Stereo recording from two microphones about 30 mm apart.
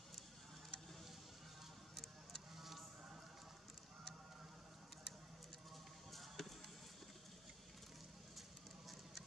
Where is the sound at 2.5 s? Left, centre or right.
Centre.